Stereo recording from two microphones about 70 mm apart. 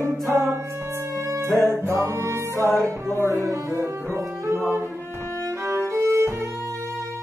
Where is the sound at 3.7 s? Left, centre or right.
Right.